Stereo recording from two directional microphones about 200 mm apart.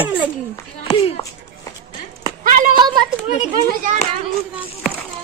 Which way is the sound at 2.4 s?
45° right (ahead or behind).